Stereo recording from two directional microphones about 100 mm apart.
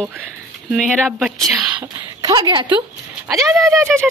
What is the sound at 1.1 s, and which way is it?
Speech, 5° right (ahead or behind).